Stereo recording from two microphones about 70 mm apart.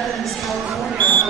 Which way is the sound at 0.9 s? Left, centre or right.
Left.